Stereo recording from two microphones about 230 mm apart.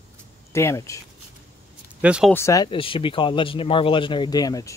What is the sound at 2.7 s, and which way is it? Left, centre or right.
Speech, left.